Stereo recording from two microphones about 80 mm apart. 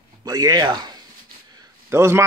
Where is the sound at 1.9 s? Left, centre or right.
Right.